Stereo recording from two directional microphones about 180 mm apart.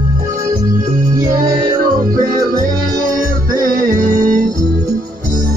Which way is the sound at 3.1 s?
50° right (ahead or behind).